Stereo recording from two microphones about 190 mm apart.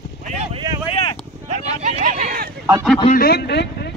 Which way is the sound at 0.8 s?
30° left (ahead or behind).